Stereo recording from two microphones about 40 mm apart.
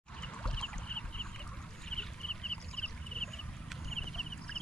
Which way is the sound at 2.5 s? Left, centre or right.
Left.